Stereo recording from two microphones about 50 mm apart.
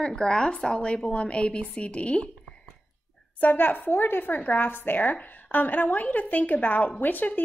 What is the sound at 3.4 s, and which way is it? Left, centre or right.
A woman's voice, left.